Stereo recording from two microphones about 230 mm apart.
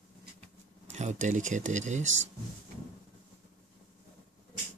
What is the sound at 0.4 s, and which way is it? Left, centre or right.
Speech, right.